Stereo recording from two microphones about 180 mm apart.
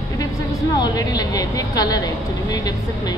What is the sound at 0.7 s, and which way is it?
A woman's voice, 20° left (ahead or behind).